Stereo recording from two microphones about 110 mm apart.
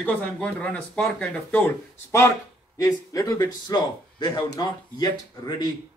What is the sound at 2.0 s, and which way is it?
A man's voice, 25° left (ahead or behind).